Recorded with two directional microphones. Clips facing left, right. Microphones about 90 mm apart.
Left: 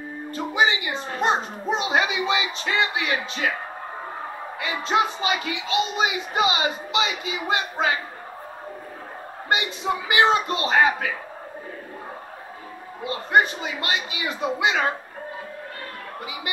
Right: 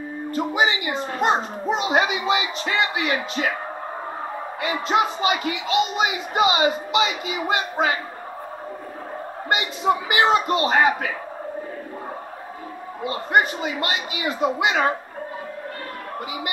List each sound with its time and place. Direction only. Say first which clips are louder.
0.4 s speech: even; 30° right (ahead or behind)
4.6 s speech: right 1 dB; 30° right (ahead or behind)
9.5 s a man's voice: right 3 dB; 30° right (ahead or behind)
13.0 s speech: even; 30° right (ahead or behind)